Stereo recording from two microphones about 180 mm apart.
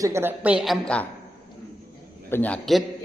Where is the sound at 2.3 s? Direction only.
10° left (ahead or behind).